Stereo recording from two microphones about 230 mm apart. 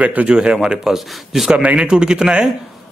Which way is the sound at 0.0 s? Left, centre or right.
Centre.